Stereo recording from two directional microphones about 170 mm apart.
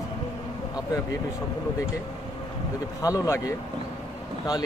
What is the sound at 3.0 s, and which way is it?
Speech, 20° left (ahead or behind).